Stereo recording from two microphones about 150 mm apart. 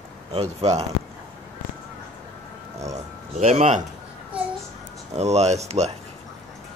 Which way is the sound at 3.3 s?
50° right (ahead or behind).